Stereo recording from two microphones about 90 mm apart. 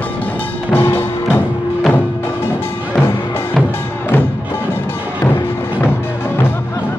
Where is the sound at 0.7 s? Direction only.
25° left (ahead or behind).